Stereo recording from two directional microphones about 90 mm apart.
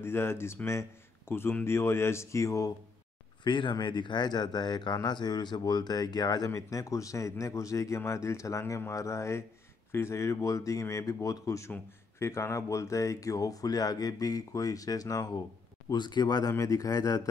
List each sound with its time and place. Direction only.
0.0 s speech: 25° left (ahead or behind)
3.4 s speech: 60° left (ahead or behind); by 15.4 s 45° left (ahead or behind)
15.9 s speech: 55° left (ahead or behind)